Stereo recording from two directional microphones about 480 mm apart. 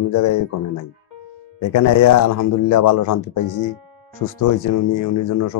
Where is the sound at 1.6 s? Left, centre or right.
Left.